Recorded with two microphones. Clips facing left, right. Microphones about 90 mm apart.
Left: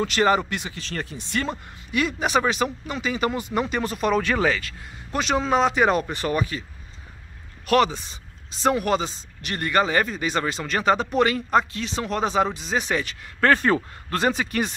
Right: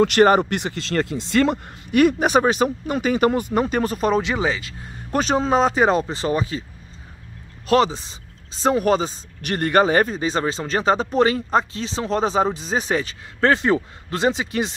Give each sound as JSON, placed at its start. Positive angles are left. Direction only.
{"t": 0.0, "sound": "speech", "side_deg": -55}
{"t": 1.9, "sound": "speech", "side_deg": -50}
{"t": 4.2, "sound": "speech", "side_deg": -20}
{"t": 5.1, "sound": "speech", "side_deg": -40}
{"t": 7.6, "sound": "speech", "side_deg": -30}
{"t": 9.4, "sound": "speech", "side_deg": -50}